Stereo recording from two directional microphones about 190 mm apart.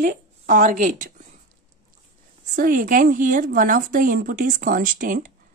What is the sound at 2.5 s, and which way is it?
A woman's voice, 45° right (ahead or behind).